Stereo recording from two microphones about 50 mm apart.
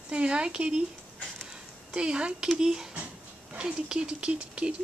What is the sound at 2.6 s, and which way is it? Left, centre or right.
Speech, centre.